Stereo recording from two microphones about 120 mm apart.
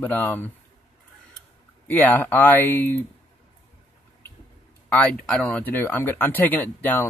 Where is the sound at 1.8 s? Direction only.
15° left (ahead or behind).